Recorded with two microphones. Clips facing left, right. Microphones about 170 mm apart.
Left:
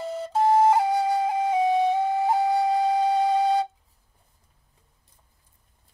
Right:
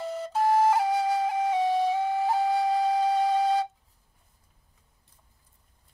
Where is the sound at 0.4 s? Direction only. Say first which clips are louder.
Left 3 dB; 20° left (ahead or behind).